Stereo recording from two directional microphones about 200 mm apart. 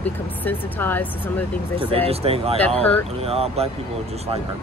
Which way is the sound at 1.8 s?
30° right (ahead or behind).